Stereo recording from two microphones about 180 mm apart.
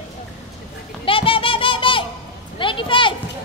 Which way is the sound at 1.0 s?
30° left (ahead or behind).